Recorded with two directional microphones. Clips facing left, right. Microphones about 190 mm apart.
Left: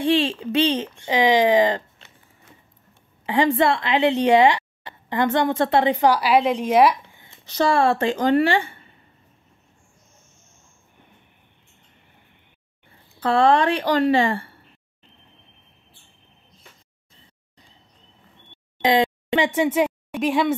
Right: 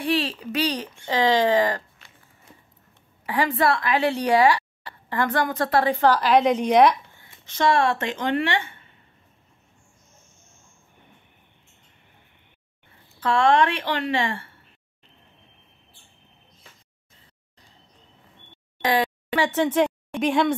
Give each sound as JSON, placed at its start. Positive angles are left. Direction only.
{"t": 0.0, "sound": "a woman's voice", "side_deg": 25}
{"t": 3.3, "sound": "a woman's voice", "side_deg": 25}
{"t": 7.4, "sound": "speech", "side_deg": 35}
{"t": 13.2, "sound": "speech", "side_deg": 35}
{"t": 18.8, "sound": "speech", "side_deg": 20}